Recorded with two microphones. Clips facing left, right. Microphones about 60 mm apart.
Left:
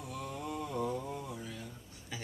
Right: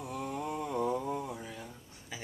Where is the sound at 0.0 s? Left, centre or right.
Right.